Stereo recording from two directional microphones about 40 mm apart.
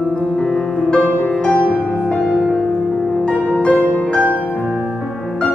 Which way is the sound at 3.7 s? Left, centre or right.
Left.